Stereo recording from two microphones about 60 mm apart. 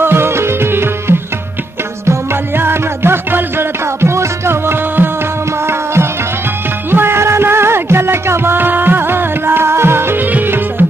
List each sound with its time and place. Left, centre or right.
0.0 s music: right
6.9 s music: right